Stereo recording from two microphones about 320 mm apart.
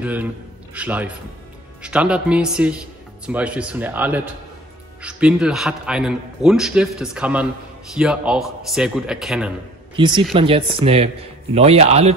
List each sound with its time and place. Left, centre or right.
0.0 s a man's voice: centre
9.9 s a man's voice: centre